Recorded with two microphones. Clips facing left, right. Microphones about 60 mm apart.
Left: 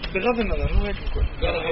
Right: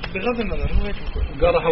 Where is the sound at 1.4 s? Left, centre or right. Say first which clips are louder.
Right 9 dB; right.